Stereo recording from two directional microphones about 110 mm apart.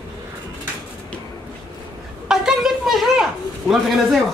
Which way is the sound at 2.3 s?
5° right (ahead or behind).